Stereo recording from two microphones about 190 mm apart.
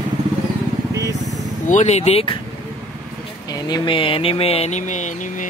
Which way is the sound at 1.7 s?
35° left (ahead or behind).